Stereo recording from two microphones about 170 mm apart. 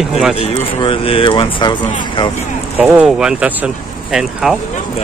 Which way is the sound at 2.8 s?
5° right (ahead or behind).